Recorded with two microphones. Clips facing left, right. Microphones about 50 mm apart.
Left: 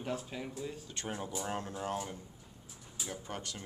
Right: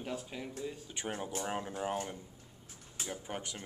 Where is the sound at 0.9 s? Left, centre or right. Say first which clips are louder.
Right 1 dB; centre.